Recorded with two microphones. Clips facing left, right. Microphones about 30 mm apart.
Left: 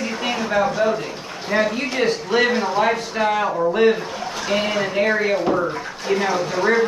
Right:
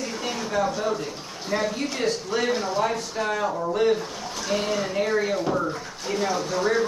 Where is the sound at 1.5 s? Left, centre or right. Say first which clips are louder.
Left 6 dB; left.